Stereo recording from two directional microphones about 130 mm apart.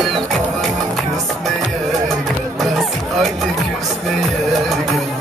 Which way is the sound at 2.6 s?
Centre (ahead or behind).